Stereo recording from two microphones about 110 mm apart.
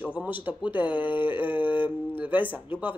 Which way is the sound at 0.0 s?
15° right (ahead or behind).